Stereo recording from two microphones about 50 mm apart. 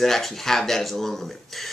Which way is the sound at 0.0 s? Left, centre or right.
Centre.